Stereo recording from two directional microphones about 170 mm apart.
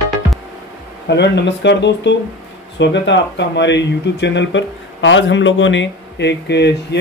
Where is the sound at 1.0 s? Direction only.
90° left.